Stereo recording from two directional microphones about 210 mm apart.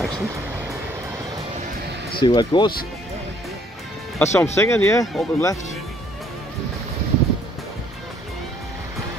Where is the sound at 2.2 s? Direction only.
20° left (ahead or behind).